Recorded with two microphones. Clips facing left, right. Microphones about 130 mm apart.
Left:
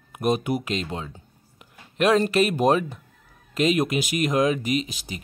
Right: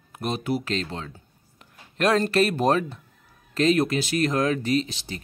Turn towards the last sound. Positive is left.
turn(degrees=10)  # may be behind; listen again after turning